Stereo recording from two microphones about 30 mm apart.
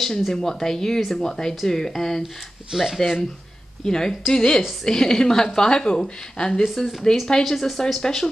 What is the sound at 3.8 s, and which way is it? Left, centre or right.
A woman's voice, centre.